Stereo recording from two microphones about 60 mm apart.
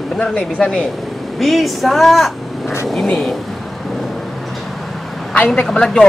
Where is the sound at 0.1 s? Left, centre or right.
Centre.